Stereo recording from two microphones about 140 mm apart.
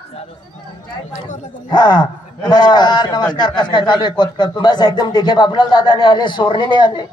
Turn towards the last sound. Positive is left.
turn(degrees=35)  # may be behind; listen again after turning